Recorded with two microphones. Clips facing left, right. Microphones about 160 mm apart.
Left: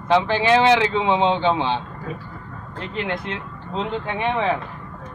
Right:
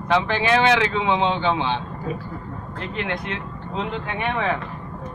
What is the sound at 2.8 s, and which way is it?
Speech, 30° left (ahead or behind).